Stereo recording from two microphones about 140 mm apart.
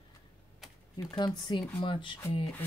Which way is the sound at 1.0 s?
30° left (ahead or behind).